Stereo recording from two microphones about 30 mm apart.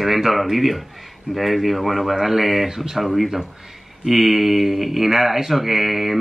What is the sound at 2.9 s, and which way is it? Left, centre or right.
Speech, centre.